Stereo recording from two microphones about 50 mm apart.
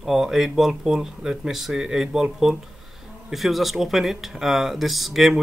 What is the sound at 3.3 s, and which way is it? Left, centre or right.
Speech, centre.